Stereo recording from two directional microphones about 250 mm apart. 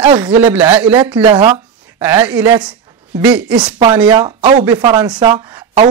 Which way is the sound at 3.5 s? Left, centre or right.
Centre.